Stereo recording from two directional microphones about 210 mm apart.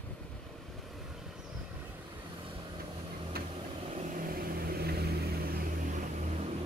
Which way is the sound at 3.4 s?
45° right (ahead or behind).